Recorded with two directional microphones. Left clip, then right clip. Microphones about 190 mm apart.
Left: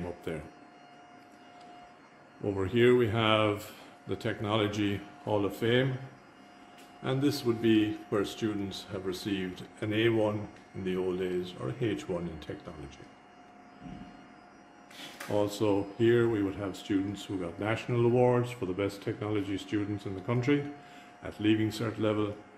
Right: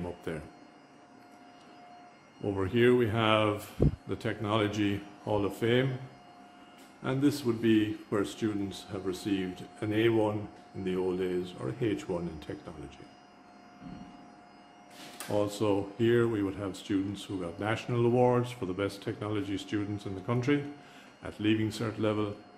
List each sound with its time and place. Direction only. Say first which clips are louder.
0.0 s a sound: even; centre (ahead or behind)
2.4 s speech: left 1 dB; centre (ahead or behind)
7.0 s speech: right 1 dB; 5° right (ahead or behind)
15.2 s speech: even; centre (ahead or behind)